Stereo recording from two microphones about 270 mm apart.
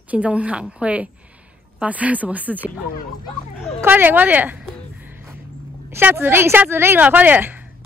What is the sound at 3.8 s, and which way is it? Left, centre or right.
Speech, centre.